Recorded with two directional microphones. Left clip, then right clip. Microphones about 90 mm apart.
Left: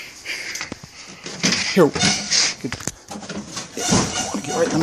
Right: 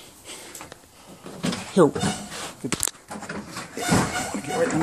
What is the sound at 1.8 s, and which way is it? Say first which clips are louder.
Speech: left 2 dB; 25° left (ahead or behind).